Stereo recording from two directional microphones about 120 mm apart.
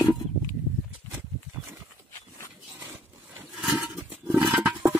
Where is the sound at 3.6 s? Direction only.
5° right (ahead or behind).